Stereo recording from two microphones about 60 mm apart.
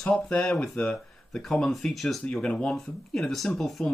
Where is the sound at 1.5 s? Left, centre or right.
Centre.